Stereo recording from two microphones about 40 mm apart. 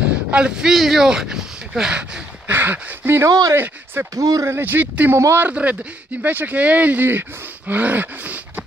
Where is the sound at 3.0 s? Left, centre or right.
Right.